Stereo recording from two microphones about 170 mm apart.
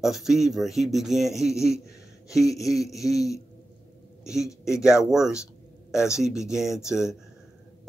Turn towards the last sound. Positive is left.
turn(degrees=-5)  # may be behind; listen again after turning